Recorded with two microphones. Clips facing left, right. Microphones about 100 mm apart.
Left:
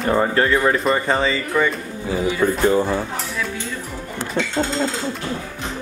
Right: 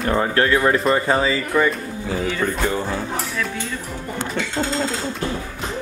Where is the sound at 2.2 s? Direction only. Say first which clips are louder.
Left 5 dB; 10° left (ahead or behind).